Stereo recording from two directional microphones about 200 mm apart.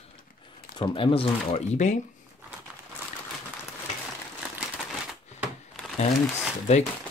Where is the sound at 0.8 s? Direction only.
25° left (ahead or behind).